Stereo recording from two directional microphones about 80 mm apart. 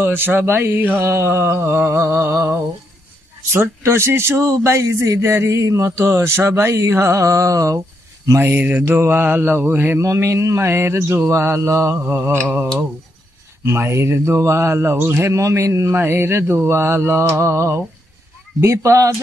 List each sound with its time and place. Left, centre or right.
0.0 s mantra: right
3.5 s speech: right
8.4 s mantra: right
9.9 s speech: right
13.7 s speech: right